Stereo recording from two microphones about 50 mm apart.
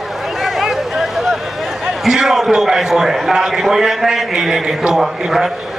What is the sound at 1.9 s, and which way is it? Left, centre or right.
A man's voice, centre.